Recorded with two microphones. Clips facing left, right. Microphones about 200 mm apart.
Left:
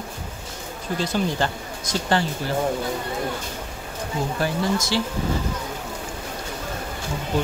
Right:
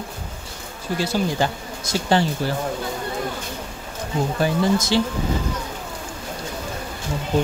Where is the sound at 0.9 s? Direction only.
10° right (ahead or behind).